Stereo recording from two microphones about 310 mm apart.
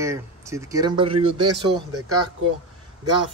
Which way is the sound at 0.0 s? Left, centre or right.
Centre.